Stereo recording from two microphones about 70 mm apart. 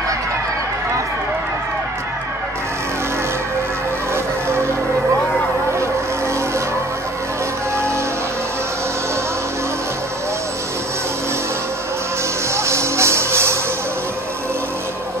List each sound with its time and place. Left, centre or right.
4.1 s music: right
7.7 s music: right
12.5 s music: right